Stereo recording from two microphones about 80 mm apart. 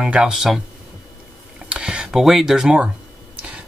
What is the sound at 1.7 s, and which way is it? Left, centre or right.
Speech, centre.